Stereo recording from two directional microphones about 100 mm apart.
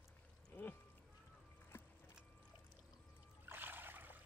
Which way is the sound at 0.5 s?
20° left (ahead or behind).